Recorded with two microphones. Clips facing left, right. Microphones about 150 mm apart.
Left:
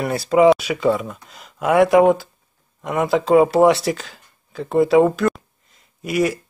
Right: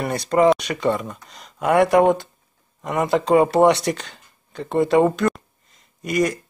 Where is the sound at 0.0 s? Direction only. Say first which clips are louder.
Left 3 dB; 5° left (ahead or behind).